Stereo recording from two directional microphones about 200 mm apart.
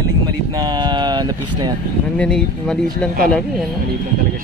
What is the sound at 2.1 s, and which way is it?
Speech, 5° left (ahead or behind).